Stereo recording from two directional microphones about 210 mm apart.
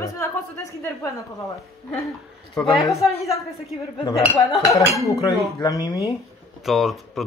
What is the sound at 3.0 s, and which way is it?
Speech, centre (ahead or behind).